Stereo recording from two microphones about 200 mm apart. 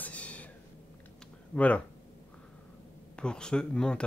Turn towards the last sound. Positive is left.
turn(degrees=5)  # may be behind; listen again after turning